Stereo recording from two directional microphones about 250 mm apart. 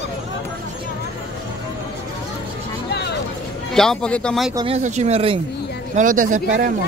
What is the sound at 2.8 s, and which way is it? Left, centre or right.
Music, left.